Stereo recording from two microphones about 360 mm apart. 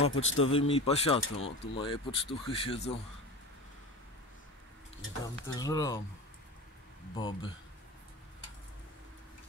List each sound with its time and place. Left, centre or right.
0.1 s speech: left
0.5 s speech: centre
5.2 s speech: centre
7.2 s speech: centre